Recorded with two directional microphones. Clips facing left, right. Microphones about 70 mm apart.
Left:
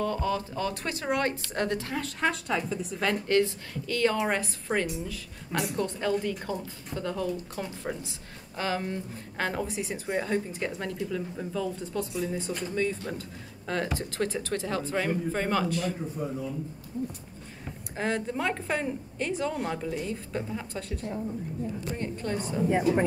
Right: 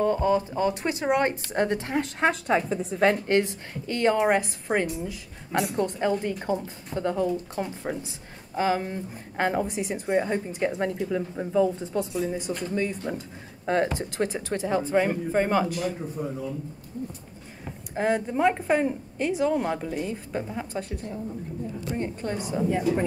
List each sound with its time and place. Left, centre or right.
0.0 s speech: right
12.4 s speech: centre
13.0 s a woman's voice: centre
17.9 s a woman's voice: centre
20.1 s speech: right
22.7 s speech: left